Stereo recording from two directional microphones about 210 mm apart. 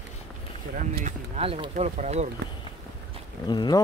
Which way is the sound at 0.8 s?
35° right (ahead or behind).